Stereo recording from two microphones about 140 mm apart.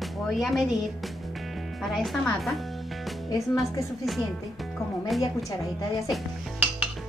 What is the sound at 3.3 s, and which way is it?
Speech, 20° left (ahead or behind).